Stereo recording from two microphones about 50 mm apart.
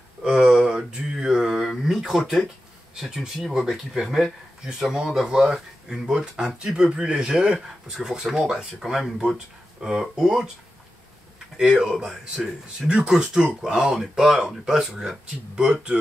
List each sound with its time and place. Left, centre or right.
0.2 s a sound: centre
1.9 s a man's voice: centre
11.5 s speech: centre
12.1 s a man's voice: centre
12.8 s speech: centre